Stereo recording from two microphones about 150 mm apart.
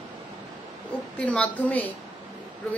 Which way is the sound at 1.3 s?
10° left (ahead or behind).